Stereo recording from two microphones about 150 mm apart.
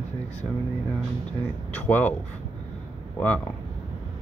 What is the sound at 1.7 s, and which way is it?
Speech, 10° left (ahead or behind).